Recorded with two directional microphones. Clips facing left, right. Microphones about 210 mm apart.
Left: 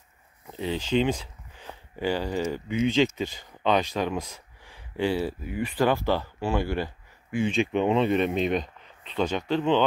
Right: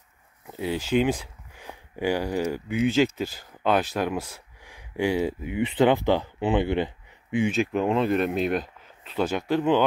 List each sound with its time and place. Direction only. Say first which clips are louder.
0.5 s a sound: right 1 dB; 10° right (ahead or behind)
2.5 s speech: even; 5° right (ahead or behind)
7.5 s speech: even; centre (ahead or behind)